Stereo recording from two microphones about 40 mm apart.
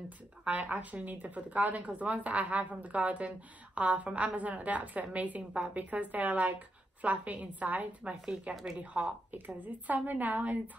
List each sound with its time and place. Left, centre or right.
0.5 s a woman's voice: right
8.1 s speech: right
9.0 s a woman's voice: right